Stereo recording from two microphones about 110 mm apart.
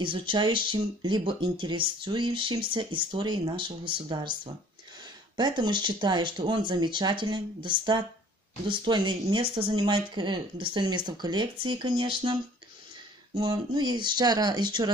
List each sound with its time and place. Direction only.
0.0 s speech: 50° right (ahead or behind)
13.3 s speech: 40° right (ahead or behind)